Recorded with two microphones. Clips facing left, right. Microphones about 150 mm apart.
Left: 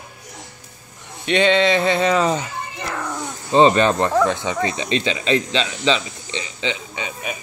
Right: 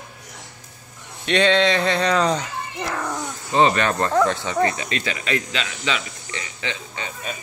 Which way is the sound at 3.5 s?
25° left (ahead or behind).